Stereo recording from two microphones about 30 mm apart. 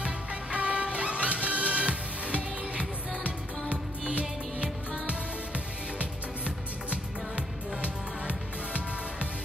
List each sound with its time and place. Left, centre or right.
0.0 s music: right